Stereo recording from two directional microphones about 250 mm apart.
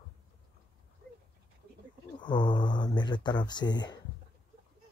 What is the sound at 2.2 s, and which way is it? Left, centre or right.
Speech, centre.